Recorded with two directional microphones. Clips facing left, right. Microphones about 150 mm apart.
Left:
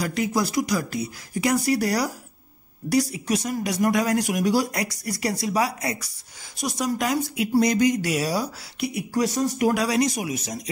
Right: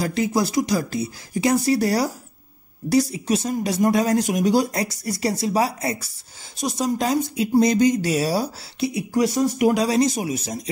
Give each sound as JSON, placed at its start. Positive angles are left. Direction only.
{"t": 0.0, "sound": "speech", "side_deg": -25}